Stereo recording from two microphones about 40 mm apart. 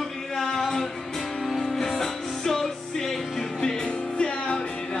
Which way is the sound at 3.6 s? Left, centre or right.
Left.